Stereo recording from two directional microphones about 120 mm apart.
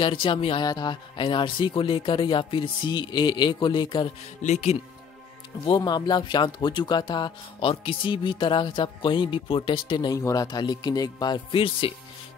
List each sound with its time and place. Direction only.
0.0 s speech: 45° left (ahead or behind)
0.7 s speech: 35° left (ahead or behind)
4.4 s speech: 80° left
5.9 s speech: 35° left (ahead or behind)
10.1 s speech: 30° left (ahead or behind); by 11.9 s 45° left (ahead or behind)